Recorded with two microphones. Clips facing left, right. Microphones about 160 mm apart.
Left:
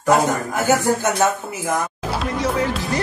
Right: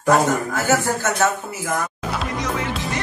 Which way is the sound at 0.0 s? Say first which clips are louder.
Even; 15° left (ahead or behind).